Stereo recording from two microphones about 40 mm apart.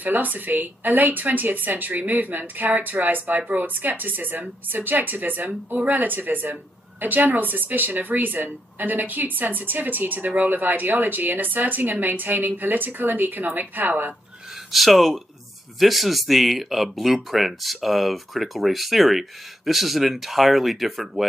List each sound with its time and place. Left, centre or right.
0.0 s speech: right
14.7 s speech: centre